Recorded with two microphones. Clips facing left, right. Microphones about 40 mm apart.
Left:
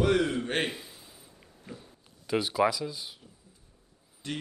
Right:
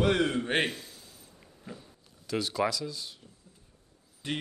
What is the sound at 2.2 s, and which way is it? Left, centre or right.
Speech, centre.